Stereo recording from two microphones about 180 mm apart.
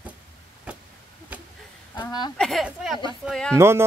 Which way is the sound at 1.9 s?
20° left (ahead or behind).